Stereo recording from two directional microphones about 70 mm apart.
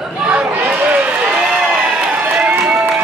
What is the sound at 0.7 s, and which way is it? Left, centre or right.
Run, right.